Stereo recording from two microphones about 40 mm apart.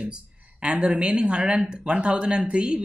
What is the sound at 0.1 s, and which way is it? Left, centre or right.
Speech, right.